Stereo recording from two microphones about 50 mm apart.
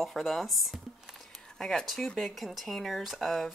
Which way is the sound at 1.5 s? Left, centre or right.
Centre.